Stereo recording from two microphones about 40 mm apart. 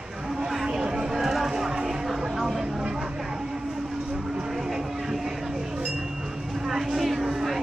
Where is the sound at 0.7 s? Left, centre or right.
Centre.